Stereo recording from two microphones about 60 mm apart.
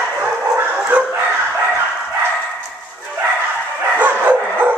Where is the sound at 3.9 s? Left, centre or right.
Right.